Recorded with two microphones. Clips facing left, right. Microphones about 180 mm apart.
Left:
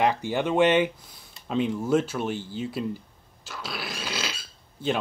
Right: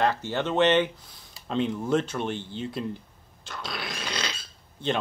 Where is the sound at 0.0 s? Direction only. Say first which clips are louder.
Left 2 dB; 15° left (ahead or behind).